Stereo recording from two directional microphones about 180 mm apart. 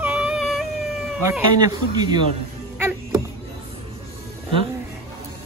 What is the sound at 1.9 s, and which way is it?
Speech, 25° right (ahead or behind).